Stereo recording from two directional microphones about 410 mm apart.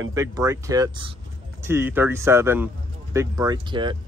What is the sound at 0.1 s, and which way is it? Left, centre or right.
Speech, centre.